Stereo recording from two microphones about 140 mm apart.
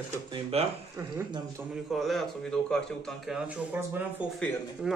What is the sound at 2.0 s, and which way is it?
Speech, centre (ahead or behind).